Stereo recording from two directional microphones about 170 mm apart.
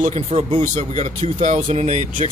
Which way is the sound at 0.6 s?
45° right (ahead or behind).